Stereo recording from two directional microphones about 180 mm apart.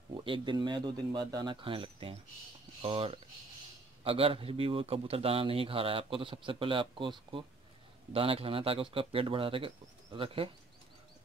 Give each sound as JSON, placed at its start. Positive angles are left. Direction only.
{"t": 0.1, "sound": "a man's voice", "side_deg": -25}